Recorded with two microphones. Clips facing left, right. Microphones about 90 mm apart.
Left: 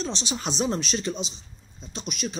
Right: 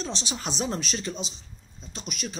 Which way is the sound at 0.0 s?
5° right (ahead or behind).